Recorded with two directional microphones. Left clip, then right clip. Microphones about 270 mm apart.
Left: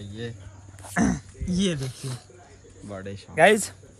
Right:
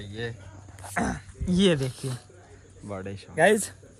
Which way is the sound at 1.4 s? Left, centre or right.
Centre.